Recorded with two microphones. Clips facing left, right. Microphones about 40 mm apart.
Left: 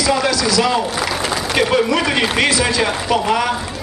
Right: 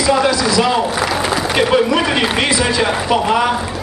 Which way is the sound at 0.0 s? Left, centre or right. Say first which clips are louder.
Right 3 dB; centre.